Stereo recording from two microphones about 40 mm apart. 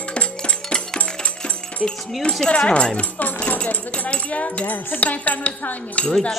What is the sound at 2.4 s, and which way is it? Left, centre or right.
Speech, left.